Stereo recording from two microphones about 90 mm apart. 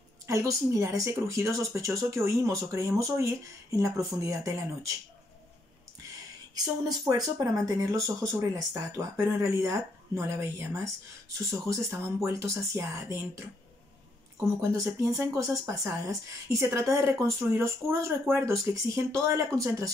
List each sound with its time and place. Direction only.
0.3 s speech: 35° right (ahead or behind)
6.5 s speech: 45° right (ahead or behind)
14.6 s speech: 35° right (ahead or behind)